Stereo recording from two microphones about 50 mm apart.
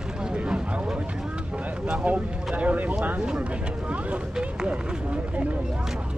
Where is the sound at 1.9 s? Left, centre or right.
Right.